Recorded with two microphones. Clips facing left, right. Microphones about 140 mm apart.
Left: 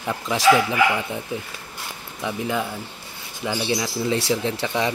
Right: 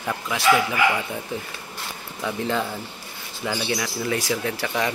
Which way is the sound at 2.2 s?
10° left (ahead or behind).